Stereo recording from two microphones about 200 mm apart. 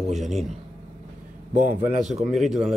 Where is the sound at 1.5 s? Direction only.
40° right (ahead or behind).